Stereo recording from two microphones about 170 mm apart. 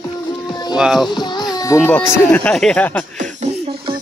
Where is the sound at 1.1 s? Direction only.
25° left (ahead or behind).